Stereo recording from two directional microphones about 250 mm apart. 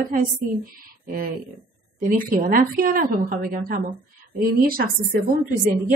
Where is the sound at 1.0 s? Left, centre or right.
Right.